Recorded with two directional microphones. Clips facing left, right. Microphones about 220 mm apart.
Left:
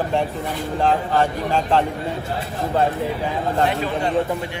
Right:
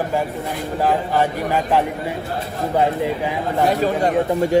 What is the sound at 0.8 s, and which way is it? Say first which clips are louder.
Speech: even; 15° right (ahead or behind).